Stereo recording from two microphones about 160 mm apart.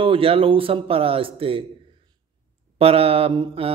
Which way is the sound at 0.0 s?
35° right (ahead or behind).